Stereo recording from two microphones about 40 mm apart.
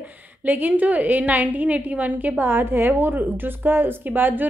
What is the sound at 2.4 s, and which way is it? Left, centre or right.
A woman's voice, right.